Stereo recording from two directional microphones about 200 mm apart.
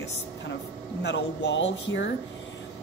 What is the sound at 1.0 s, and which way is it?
Speech, 65° left (ahead or behind).